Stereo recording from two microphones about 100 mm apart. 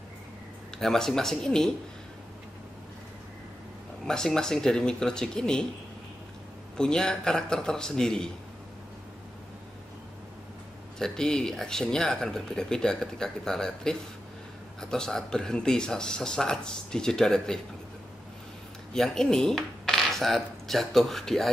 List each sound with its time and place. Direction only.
0.7 s speech: 5° left (ahead or behind)
4.0 s speech: 5° left (ahead or behind)
6.8 s speech: 5° left (ahead or behind)
11.0 s speech: 5° left (ahead or behind)
18.9 s cutlery: 5° left (ahead or behind)